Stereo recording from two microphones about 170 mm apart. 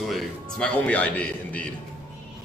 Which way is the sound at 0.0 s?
5° left (ahead or behind).